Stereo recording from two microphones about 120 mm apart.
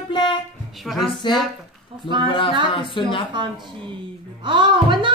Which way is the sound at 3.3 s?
40° right (ahead or behind).